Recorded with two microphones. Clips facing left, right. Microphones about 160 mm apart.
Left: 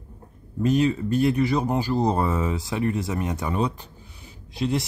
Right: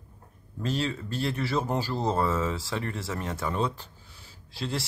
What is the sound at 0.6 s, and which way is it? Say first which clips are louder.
Speech: left 9 dB; 15° left (ahead or behind).